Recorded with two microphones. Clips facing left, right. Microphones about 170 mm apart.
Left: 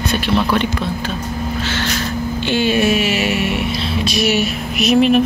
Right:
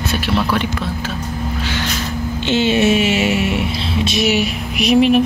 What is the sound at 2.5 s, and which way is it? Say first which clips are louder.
Music: right 2 dB; 25° right (ahead or behind).